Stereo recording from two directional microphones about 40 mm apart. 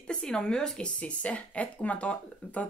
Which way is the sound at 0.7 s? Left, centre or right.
Left.